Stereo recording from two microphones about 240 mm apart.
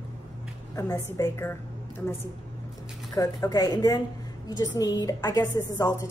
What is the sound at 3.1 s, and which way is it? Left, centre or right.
A woman's voice, centre.